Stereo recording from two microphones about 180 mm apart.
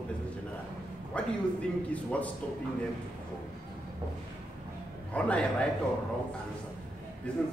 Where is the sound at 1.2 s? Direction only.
5° left (ahead or behind).